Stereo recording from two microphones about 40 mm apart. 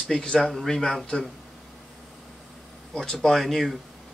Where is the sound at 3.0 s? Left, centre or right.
Centre.